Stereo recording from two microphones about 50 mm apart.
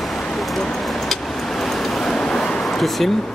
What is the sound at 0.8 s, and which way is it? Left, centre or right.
Vehicle, centre.